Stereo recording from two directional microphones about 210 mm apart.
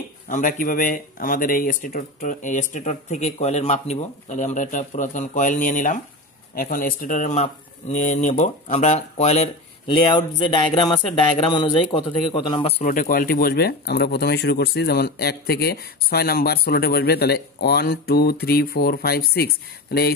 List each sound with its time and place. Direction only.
0.3 s speech: 40° left (ahead or behind)